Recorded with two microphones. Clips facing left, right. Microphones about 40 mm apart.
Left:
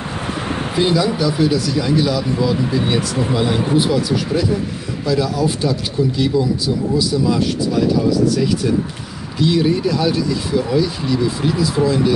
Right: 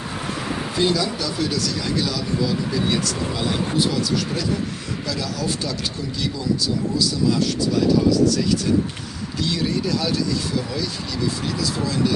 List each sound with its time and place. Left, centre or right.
0.7 s speech: left
9.4 s speech: centre